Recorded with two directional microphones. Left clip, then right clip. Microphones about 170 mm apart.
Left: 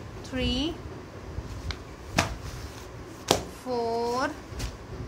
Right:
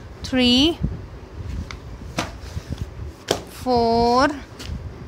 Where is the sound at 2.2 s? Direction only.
35° left (ahead or behind).